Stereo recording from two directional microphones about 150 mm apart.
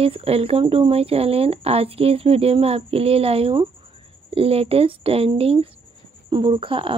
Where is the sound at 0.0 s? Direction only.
40° right (ahead or behind).